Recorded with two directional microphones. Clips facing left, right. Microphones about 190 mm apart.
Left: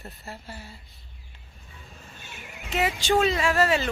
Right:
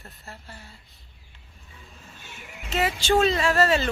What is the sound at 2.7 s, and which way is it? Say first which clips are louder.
Speech: right 1 dB; 15° left (ahead or behind).